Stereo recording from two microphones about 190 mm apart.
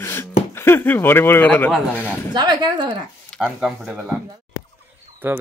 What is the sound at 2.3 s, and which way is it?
Speech, 20° right (ahead or behind).